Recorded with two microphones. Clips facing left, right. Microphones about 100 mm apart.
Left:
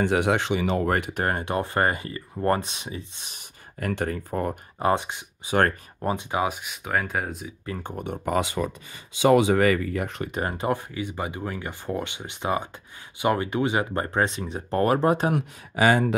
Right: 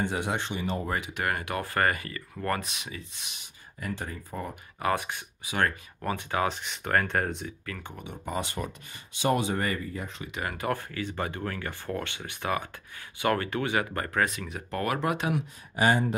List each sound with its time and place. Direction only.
0.0 s speech: 80° left; by 1.1 s 60° left (ahead or behind)
1.1 s speech: 30° left (ahead or behind)
3.3 s speech: 60° left (ahead or behind)
4.7 s speech: 25° left (ahead or behind)
5.5 s speech: 50° left (ahead or behind)
5.9 s speech: 20° left (ahead or behind); by 7.5 s 5° left (ahead or behind)
7.8 s speech: 50° left (ahead or behind)
9.3 s speech: 90° left; by 10.3 s 65° left (ahead or behind)
10.5 s speech: 20° left (ahead or behind); by 15.3 s 35° left (ahead or behind)
15.7 s speech: 90° left